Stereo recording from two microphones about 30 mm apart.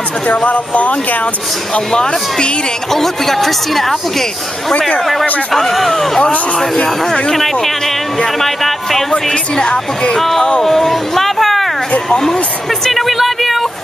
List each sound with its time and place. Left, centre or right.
0.5 s speech: left
1.7 s speech: left
2.9 s speech: centre
9.3 s speech: left
10.1 s speech: centre
12.1 s speech: centre
12.6 s a sound: centre